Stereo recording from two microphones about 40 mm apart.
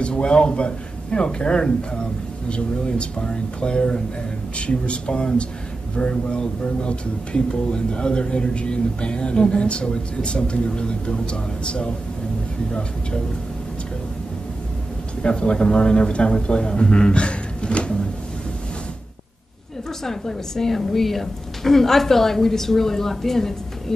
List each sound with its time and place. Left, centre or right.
0.0 s speech: left
15.2 s speech: left
20.0 s a woman's voice: centre